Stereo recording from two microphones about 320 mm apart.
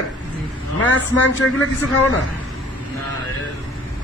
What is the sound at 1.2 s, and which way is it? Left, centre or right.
Speech, left.